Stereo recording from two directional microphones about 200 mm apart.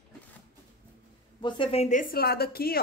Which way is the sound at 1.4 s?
25° left (ahead or behind).